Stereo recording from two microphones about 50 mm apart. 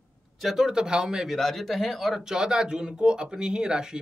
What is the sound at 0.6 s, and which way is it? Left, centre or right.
Speech, centre.